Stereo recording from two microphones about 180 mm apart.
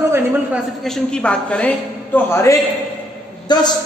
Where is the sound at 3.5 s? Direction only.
25° left (ahead or behind).